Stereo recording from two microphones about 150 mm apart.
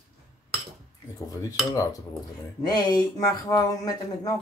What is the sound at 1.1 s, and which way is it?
Speech, 25° left (ahead or behind).